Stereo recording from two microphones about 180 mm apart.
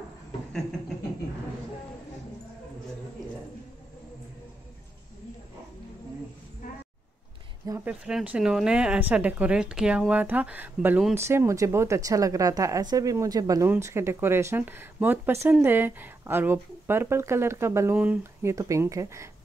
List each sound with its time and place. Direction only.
7.8 s speech: 5° right (ahead or behind)